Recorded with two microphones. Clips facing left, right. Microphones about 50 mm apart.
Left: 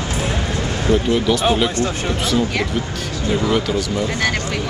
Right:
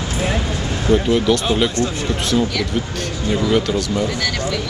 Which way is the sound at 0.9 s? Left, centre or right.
Centre.